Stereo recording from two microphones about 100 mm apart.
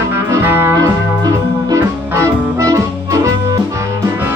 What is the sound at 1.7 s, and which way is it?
Music, 30° right (ahead or behind).